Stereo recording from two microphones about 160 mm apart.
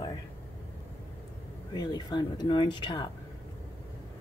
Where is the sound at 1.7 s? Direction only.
25° left (ahead or behind).